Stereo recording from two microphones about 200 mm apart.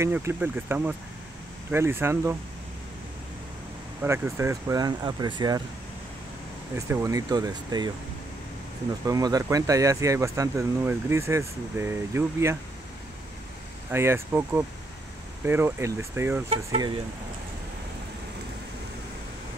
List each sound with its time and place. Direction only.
0.0 s speech: 10° right (ahead or behind)
4.0 s speech: 10° right (ahead or behind)
6.7 s speech: 15° right (ahead or behind)
9.0 s speech: 20° right (ahead or behind)
13.9 s speech: 10° right (ahead or behind)
16.4 s speech: 25° right (ahead or behind)